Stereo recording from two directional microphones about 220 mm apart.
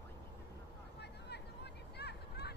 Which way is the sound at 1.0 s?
50° left (ahead or behind).